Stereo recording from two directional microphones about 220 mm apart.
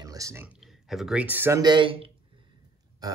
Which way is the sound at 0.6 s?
Centre (ahead or behind).